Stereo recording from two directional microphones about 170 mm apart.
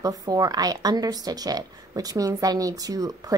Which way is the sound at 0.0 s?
20° right (ahead or behind).